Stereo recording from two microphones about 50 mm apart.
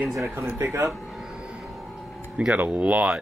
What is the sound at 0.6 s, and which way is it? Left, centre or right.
Speech, right.